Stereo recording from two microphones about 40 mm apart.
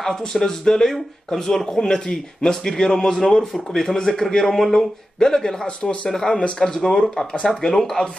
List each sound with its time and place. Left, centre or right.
0.0 s speech: centre
5.7 s speech: left
6.0 s speech: centre